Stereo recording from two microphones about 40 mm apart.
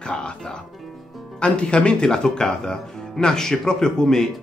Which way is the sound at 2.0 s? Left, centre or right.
Centre.